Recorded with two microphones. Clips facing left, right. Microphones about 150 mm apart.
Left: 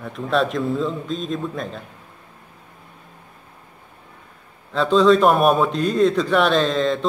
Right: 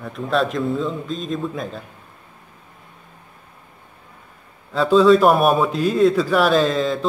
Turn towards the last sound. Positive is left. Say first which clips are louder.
# right 1 dB
turn(degrees=-5)  # may be behind; listen again after turning